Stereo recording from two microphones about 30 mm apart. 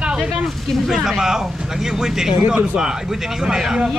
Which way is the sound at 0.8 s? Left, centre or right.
Centre.